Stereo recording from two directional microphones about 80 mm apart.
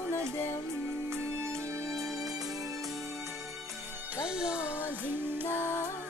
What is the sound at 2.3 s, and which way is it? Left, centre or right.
Music, right.